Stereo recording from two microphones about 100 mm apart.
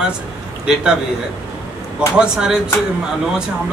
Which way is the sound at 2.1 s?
10° right (ahead or behind).